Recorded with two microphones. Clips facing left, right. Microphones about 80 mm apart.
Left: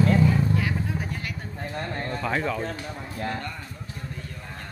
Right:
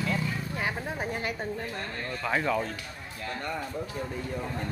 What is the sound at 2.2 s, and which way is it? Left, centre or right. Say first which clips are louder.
Speech: right 1 dB; centre.